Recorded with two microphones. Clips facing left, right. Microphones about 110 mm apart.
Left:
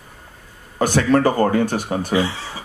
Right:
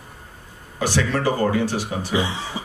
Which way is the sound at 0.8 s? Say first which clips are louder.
Left 6 dB; 50° left (ahead or behind).